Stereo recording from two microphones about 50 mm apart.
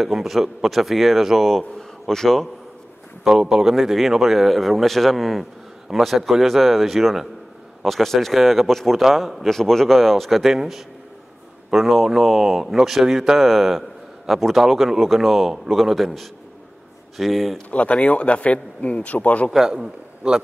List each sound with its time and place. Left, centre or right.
0.0 s speech: centre
1.8 s a sound: centre
3.3 s speech: centre
17.6 s speech: left
19.5 s a man's voice: centre